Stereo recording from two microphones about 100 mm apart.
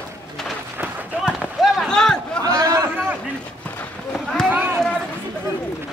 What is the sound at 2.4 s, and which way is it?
Chatter, 35° right (ahead or behind).